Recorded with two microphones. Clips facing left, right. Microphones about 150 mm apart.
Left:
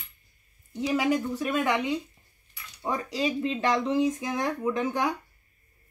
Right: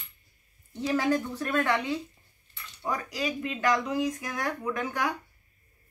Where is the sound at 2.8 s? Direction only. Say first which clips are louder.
Left 3 dB; 25° left (ahead or behind).